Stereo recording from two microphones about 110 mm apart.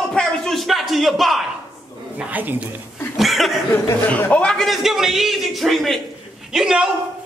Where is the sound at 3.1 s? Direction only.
Centre (ahead or behind).